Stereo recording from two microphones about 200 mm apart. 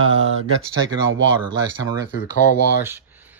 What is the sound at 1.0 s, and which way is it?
Speech, 75° right (ahead or behind).